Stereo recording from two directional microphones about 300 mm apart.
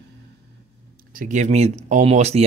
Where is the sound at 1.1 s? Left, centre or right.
Right.